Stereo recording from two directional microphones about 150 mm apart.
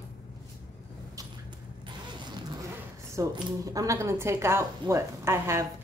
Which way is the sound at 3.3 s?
25° right (ahead or behind).